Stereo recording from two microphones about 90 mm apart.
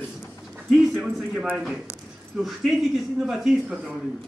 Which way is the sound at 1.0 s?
5° right (ahead or behind).